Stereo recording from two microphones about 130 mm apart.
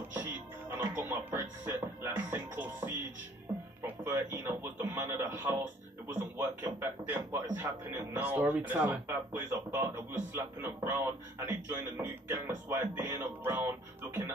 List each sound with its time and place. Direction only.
0.1 s speech: 15° right (ahead or behind)